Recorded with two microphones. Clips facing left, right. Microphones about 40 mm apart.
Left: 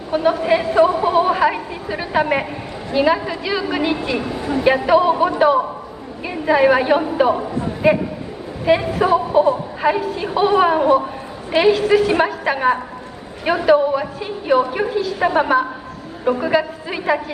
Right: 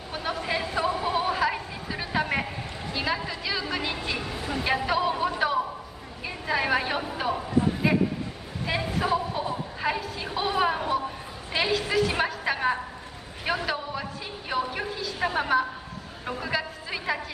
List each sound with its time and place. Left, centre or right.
0.1 s a woman's voice: centre